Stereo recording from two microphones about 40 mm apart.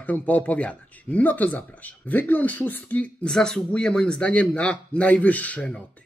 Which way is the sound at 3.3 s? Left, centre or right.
Centre.